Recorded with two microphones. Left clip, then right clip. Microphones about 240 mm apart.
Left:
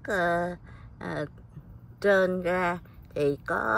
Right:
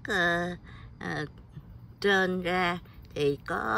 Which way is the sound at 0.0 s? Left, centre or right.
Centre.